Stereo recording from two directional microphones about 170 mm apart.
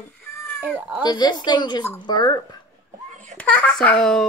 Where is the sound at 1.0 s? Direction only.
25° left (ahead or behind).